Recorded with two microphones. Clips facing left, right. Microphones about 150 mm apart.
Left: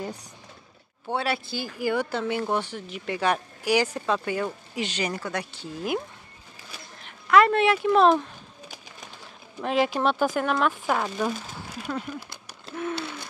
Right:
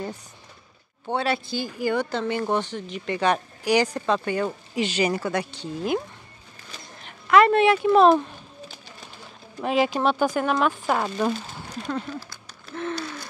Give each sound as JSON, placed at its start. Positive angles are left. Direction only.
{"t": 1.0, "sound": "speech", "side_deg": 5}
{"t": 7.2, "sound": "speech", "side_deg": 0}
{"t": 9.6, "sound": "speech", "side_deg": -5}
{"t": 12.2, "sound": "a sound", "side_deg": 20}